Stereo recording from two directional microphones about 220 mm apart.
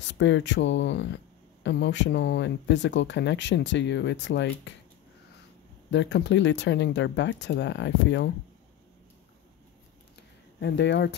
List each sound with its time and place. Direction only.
0.0 s speech: 55° left (ahead or behind)
5.9 s speech: 55° left (ahead or behind)
10.6 s speech: 50° left (ahead or behind)